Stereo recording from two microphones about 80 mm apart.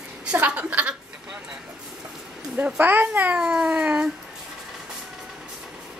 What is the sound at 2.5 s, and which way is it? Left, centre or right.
Speech, centre.